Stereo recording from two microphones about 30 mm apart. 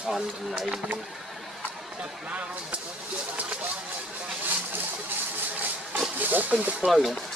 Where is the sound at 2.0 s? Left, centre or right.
Right.